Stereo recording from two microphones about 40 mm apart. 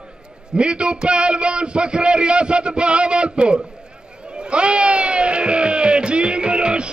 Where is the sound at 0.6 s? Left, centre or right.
Right.